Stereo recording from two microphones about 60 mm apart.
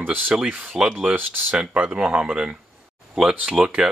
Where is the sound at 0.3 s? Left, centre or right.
Centre.